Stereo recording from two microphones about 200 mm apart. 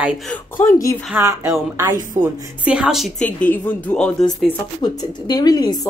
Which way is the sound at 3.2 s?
10° left (ahead or behind).